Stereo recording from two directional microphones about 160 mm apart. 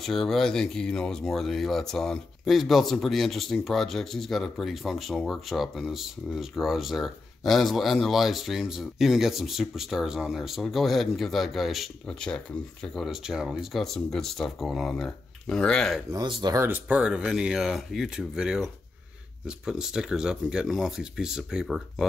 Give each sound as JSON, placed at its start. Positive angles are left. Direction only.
{"t": 0.0, "sound": "speech", "side_deg": 0}
{"t": 16.1, "sound": "speech", "side_deg": -25}
{"t": 16.6, "sound": "speech", "side_deg": -10}